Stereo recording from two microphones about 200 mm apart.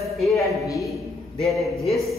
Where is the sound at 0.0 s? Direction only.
Centre (ahead or behind).